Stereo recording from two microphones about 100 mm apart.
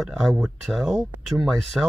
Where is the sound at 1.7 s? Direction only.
10° right (ahead or behind).